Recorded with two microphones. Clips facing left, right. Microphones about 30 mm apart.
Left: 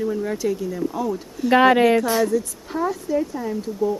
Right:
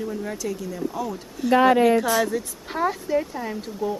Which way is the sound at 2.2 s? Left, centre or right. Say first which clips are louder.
Left 4 dB; right.